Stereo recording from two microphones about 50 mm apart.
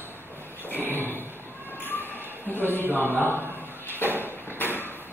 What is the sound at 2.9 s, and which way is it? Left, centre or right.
Speech, right.